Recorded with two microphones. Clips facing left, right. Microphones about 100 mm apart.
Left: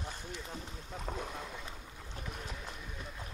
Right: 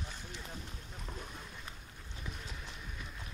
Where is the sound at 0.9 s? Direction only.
70° left (ahead or behind); by 1.6 s 90° left.